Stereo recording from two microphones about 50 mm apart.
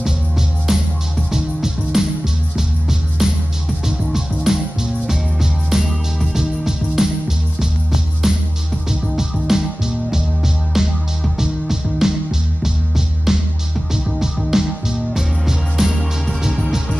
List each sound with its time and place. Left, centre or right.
1.3 s music: centre